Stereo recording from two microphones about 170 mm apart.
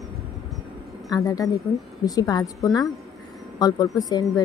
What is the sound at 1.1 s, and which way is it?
A woman's voice, 20° left (ahead or behind).